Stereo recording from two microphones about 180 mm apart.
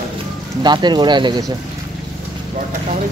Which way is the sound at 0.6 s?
25° right (ahead or behind).